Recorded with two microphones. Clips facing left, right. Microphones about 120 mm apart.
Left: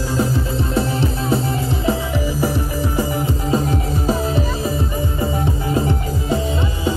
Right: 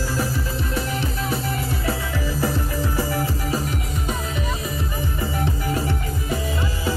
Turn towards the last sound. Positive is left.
turn(degrees=25)  # may be behind; listen again after turning